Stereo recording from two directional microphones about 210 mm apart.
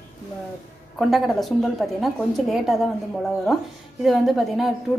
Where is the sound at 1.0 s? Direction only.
Centre (ahead or behind).